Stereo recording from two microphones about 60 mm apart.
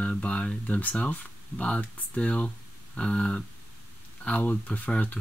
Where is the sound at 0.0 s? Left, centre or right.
Left.